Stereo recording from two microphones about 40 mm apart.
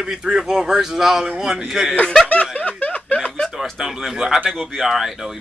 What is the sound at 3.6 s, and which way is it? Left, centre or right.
A man's voice, centre.